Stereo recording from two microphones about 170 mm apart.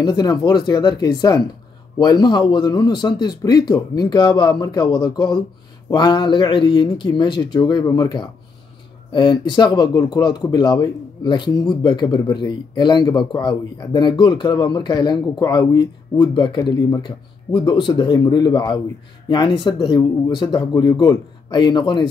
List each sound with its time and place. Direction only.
0.0 s speech: 25° left (ahead or behind)